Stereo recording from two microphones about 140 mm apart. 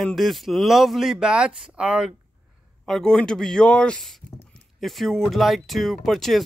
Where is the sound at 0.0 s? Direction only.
Centre (ahead or behind).